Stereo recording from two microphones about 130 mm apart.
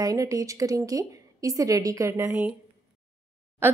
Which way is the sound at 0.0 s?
25° right (ahead or behind).